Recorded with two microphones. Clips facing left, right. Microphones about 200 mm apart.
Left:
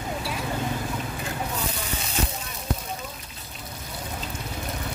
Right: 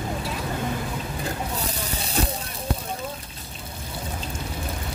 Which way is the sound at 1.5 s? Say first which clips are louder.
Right 1 dB; 35° right (ahead or behind).